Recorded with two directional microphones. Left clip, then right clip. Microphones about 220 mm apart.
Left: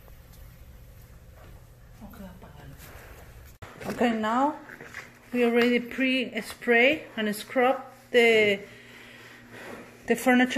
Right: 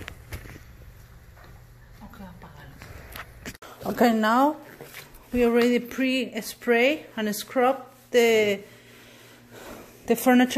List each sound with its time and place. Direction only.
4.0 s speech: 30° right (ahead or behind)
5.3 s speech: 20° right (ahead or behind)
10.0 s speech: 15° right (ahead or behind)